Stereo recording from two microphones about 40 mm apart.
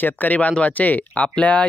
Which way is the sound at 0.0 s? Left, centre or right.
Left.